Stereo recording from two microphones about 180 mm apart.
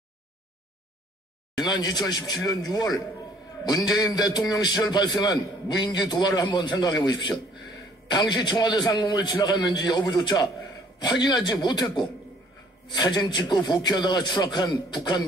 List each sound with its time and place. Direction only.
1.6 s a man's voice: 25° left (ahead or behind)